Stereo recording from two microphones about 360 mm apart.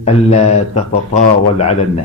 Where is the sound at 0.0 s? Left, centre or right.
Centre.